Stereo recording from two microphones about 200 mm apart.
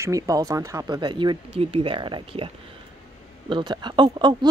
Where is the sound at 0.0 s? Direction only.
15° right (ahead or behind).